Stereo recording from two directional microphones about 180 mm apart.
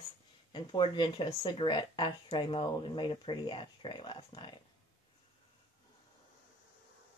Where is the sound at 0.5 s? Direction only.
30° left (ahead or behind).